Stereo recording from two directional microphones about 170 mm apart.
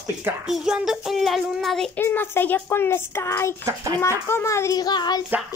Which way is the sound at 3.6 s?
20° right (ahead or behind).